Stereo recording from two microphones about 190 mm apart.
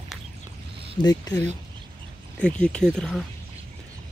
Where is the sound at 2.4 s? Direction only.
5° left (ahead or behind).